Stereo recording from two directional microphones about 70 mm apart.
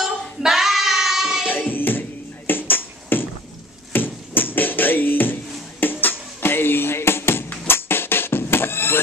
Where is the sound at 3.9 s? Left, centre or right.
Left.